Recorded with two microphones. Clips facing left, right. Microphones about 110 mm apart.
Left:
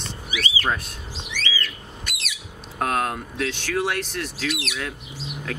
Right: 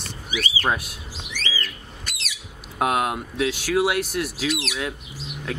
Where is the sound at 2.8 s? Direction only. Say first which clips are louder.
Right 2 dB; 10° right (ahead or behind).